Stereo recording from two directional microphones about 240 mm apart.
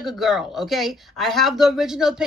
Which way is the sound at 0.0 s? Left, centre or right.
Centre.